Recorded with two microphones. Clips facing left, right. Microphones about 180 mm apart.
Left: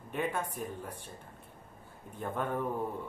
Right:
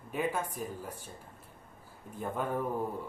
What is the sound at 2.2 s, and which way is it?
Speech, 5° right (ahead or behind).